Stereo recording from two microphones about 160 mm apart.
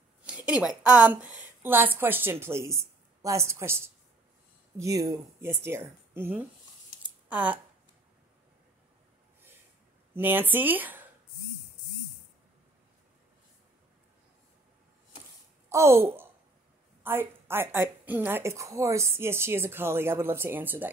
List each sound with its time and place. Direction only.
0.2 s a woman's voice: 10° right (ahead or behind)
7.0 s a sound: 10° right (ahead or behind)
10.1 s a woman's voice: 10° right (ahead or behind)
15.7 s a woman's voice: 15° right (ahead or behind)